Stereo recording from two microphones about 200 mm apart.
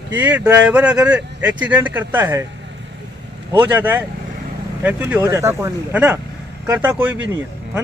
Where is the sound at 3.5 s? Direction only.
10° right (ahead or behind).